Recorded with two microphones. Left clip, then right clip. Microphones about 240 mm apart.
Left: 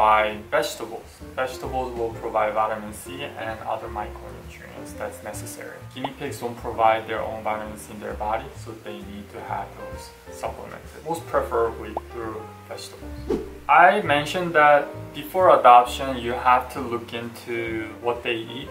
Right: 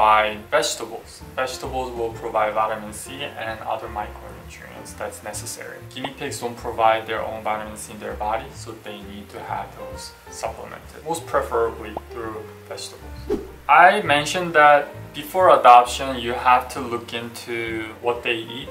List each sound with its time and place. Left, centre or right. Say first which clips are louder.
0.0 s speech: right 2 dB; centre
1.7 s speech: right 1 dB; left
2.2 s speech: right 1 dB; centre
10.4 s speech: right 2 dB; centre